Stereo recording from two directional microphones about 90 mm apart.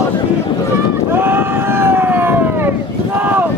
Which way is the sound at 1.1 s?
25° right (ahead or behind).